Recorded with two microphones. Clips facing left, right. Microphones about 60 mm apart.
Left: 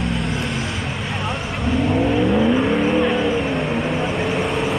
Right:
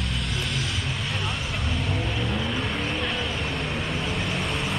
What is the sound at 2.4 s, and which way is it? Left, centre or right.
Vehicle, centre.